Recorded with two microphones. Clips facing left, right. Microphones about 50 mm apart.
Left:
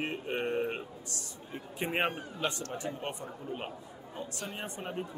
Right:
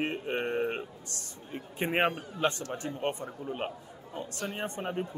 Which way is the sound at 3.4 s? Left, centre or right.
Right.